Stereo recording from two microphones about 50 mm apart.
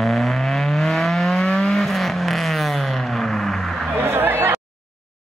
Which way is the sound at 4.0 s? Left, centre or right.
Right.